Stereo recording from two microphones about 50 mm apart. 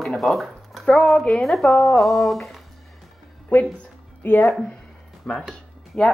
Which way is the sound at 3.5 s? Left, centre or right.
Left.